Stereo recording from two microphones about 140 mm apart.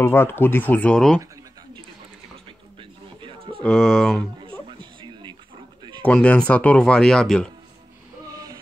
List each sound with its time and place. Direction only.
0.0 s speech: 15° left (ahead or behind)
2.8 s a sound: 35° right (ahead or behind)
3.6 s speech: 5° left (ahead or behind)
4.5 s music: 35° right (ahead or behind)
6.0 s speech: 10° left (ahead or behind)